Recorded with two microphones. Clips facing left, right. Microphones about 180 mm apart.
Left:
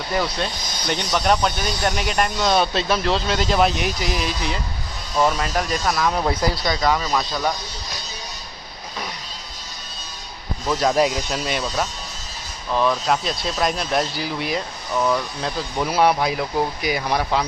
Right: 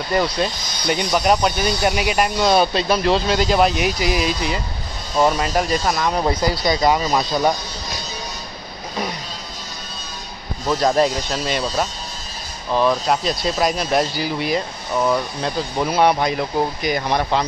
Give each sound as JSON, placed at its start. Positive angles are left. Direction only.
{"t": 0.2, "sound": "speech", "side_deg": -5}
{"t": 6.6, "sound": "speech", "side_deg": -15}
{"t": 11.0, "sound": "speech", "side_deg": 10}
{"t": 11.6, "sound": "speech", "side_deg": -10}
{"t": 15.0, "sound": "speech", "side_deg": -10}
{"t": 15.4, "sound": "speech", "side_deg": 0}